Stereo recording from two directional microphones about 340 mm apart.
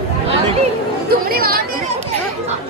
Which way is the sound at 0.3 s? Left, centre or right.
Centre.